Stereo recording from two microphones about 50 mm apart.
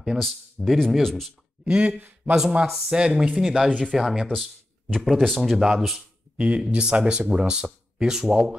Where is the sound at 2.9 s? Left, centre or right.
Centre.